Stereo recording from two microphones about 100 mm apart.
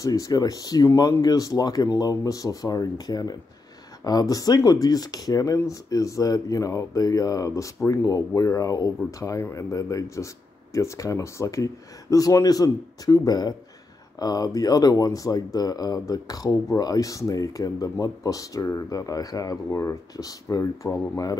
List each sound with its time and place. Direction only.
0.0 s speech: 35° left (ahead or behind)